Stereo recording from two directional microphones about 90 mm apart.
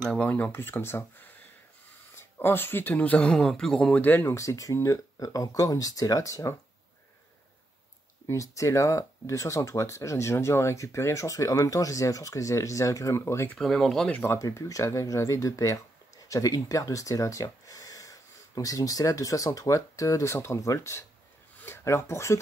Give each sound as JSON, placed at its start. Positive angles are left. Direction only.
{"t": 0.0, "sound": "speech", "side_deg": 10}
{"t": 8.3, "sound": "speech", "side_deg": 35}
{"t": 13.6, "sound": "speech", "side_deg": 5}
{"t": 14.2, "sound": "speech", "side_deg": 30}